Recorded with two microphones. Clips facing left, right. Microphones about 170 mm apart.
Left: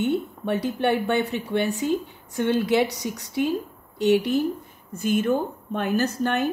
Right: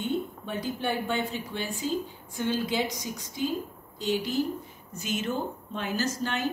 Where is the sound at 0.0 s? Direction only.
70° left (ahead or behind).